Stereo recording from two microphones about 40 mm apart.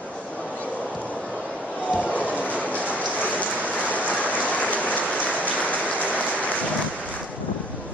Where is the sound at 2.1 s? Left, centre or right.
Left.